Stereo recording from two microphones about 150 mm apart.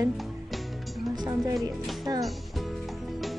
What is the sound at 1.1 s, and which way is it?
Speech, 25° right (ahead or behind).